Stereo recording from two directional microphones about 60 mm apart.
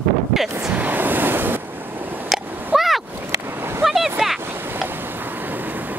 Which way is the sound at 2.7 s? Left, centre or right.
Centre.